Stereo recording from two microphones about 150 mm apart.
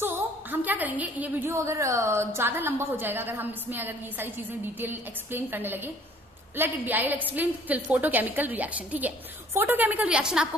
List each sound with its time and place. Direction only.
0.0 s a woman's voice: 10° right (ahead or behind)